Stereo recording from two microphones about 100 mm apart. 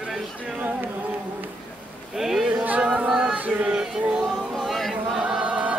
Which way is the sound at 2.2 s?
5° right (ahead or behind).